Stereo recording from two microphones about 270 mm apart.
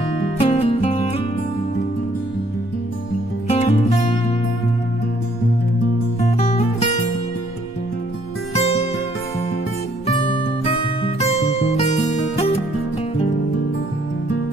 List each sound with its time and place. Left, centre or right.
0.4 s music: left
3.4 s music: left
6.2 s music: left
8.5 s music: left
10.0 s music: centre